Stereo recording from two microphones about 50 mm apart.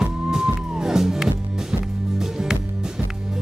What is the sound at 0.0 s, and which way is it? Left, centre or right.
Music, centre.